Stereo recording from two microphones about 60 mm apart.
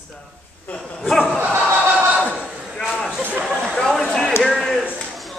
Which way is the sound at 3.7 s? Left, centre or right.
Centre.